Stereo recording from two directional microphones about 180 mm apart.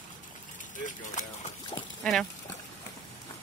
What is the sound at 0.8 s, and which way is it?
Speech, 40° left (ahead or behind).